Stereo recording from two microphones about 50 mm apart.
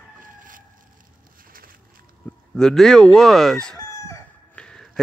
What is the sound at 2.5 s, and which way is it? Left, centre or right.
Speech, centre.